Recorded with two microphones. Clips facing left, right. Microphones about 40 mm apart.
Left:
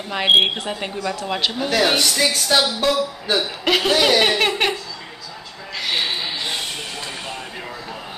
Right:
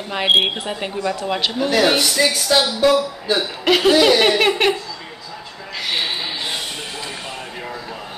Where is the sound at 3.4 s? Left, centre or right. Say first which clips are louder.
Right 3 dB; centre.